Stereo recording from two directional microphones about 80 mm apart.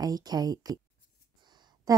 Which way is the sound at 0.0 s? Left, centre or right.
Right.